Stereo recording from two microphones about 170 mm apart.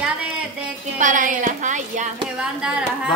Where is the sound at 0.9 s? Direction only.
50° right (ahead or behind).